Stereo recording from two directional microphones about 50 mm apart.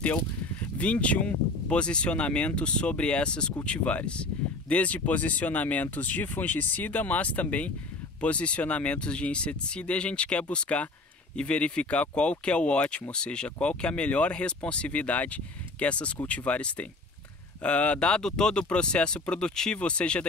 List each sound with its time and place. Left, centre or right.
0.7 s speech: left